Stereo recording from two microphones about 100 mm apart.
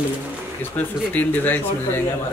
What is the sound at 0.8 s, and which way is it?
Speech, 15° left (ahead or behind).